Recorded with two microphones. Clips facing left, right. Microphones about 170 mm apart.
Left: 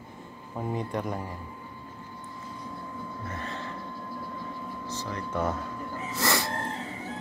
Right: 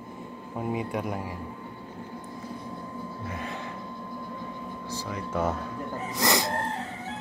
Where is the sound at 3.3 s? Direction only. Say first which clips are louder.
Right 2 dB; 10° right (ahead or behind).